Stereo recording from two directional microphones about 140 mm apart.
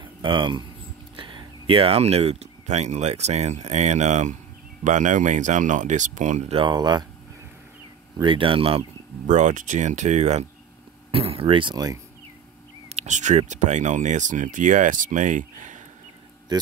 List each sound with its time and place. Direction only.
0.0 s speech: 35° right (ahead or behind); by 6.4 s 60° right (ahead or behind)
6.5 s speech: 35° right (ahead or behind)
8.2 s speech: 40° right (ahead or behind)
9.3 s speech: 60° right (ahead or behind)
11.1 s speech: 45° right (ahead or behind)
12.9 s speech: 55° right (ahead or behind)